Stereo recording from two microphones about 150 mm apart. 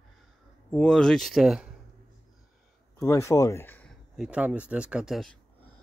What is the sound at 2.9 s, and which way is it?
Speech, 20° left (ahead or behind).